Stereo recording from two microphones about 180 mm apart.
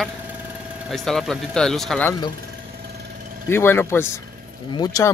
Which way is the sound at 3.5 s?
15° left (ahead or behind).